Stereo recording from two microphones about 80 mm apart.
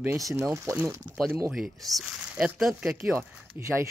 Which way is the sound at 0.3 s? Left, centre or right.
Right.